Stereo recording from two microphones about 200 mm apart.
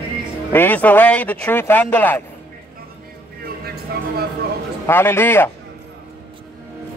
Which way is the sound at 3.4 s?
50° right (ahead or behind).